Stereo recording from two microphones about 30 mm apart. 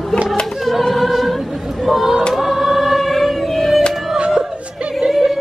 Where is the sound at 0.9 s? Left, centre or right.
Centre.